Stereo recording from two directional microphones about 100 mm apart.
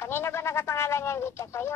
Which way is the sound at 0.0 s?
25° left (ahead or behind).